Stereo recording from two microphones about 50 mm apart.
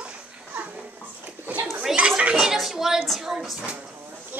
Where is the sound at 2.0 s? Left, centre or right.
Right.